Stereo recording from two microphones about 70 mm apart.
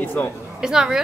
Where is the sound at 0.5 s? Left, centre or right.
Centre.